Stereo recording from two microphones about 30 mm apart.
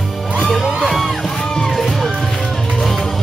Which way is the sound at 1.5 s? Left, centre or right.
Centre.